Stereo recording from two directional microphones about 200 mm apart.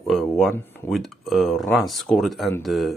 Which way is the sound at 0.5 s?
10° left (ahead or behind).